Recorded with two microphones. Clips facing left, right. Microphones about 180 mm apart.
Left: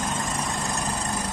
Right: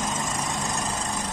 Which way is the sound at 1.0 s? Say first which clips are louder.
Left 1 dB; 65° left (ahead or behind).